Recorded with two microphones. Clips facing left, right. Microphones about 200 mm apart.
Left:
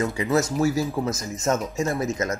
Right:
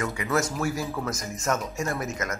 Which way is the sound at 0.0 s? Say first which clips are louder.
Left 4 dB; 25° left (ahead or behind).